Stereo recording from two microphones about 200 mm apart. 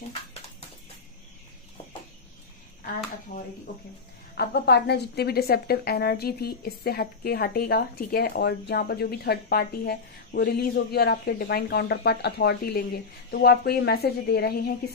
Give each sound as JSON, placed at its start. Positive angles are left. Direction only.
{"t": 4.4, "sound": "a woman's voice", "side_deg": 55}